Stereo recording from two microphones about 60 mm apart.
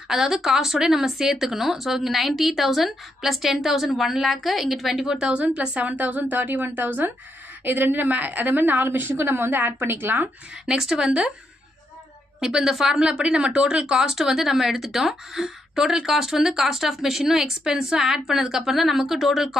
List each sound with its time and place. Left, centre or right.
0.1 s a woman's voice: centre; by 10.3 s right
10.6 s a woman's voice: centre
12.4 s a woman's voice: centre